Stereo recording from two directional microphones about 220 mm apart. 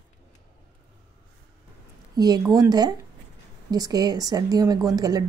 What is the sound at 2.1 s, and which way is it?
A woman's voice, 15° right (ahead or behind).